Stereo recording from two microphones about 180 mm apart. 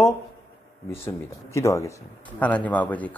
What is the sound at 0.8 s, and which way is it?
A man's voice, 15° left (ahead or behind).